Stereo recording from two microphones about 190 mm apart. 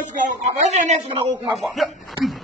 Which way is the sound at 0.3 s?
40° right (ahead or behind).